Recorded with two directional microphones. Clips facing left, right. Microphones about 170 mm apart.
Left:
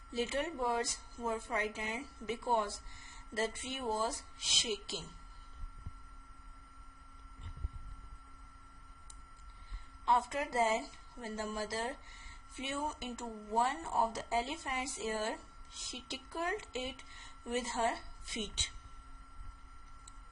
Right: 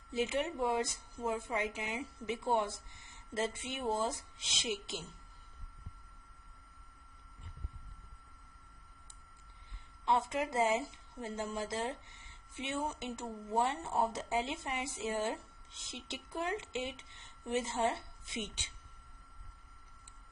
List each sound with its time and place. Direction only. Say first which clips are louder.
0.1 s a woman's voice: right 2 dB; 15° right (ahead or behind)
10.0 s a woman's voice: right 1 dB; 25° right (ahead or behind)